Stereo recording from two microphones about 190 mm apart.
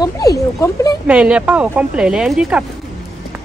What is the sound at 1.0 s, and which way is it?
Speech, 5° right (ahead or behind).